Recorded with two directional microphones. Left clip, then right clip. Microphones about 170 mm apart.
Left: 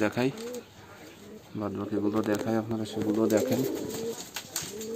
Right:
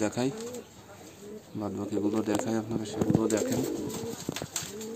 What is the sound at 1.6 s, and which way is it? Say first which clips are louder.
Speech: left 1 dB; 5° left (ahead or behind).